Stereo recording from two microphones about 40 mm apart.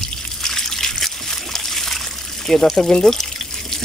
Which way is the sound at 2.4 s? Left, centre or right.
Centre.